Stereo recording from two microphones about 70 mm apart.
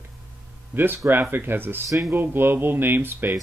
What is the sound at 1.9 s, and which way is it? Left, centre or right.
Speech, right.